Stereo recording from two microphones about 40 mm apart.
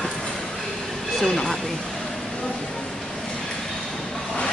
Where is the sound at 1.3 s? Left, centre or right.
Centre.